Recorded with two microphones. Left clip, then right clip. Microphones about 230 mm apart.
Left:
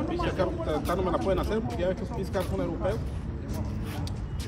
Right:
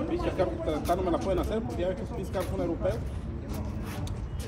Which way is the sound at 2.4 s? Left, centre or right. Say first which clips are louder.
Even; left.